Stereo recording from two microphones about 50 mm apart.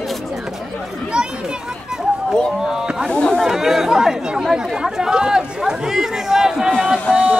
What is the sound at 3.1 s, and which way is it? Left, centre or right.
Speech, left.